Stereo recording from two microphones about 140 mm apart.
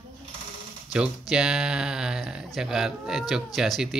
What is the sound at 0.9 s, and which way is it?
Speech, 5° right (ahead or behind).